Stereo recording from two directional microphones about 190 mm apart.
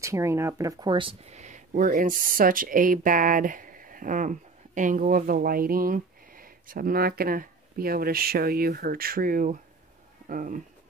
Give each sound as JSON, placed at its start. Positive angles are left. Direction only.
{"t": 0.0, "sound": "speech", "side_deg": -15}